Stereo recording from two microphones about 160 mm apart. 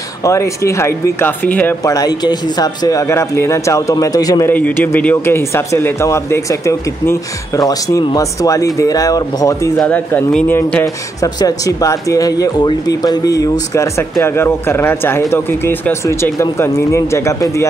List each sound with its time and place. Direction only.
0.2 s speech: 20° left (ahead or behind)
1.9 s speech: 25° left (ahead or behind)
4.5 s speech: 10° left (ahead or behind)
9.8 s speech: 10° left (ahead or behind)
11.3 s speech: 20° left (ahead or behind)